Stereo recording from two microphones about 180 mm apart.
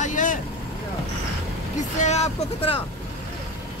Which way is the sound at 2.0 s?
40° left (ahead or behind).